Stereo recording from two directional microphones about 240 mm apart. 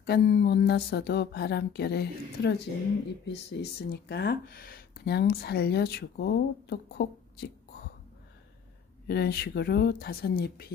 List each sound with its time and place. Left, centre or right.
0.0 s speech: left
9.0 s speech: left